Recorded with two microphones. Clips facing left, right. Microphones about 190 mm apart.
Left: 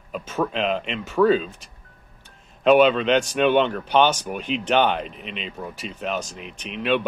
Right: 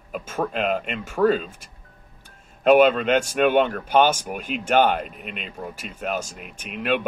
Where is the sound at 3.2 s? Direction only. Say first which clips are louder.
Even; 10° right (ahead or behind).